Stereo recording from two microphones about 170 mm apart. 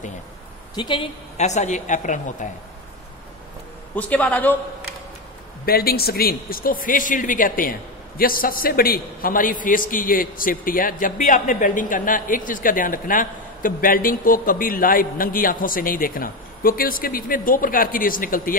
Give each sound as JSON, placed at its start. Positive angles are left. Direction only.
{"t": 0.7, "sound": "a woman's voice", "side_deg": 30}
{"t": 1.4, "sound": "a woman's voice", "side_deg": 40}
{"t": 3.9, "sound": "a man's voice", "side_deg": 10}
{"t": 5.7, "sound": "a man's voice", "side_deg": 65}